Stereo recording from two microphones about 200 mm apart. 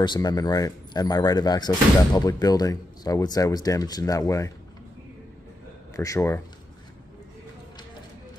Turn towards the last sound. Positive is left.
turn(degrees=15)  # may be behind; listen again after turning